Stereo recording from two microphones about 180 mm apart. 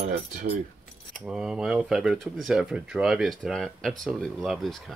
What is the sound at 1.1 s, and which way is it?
Speech, 5° right (ahead or behind).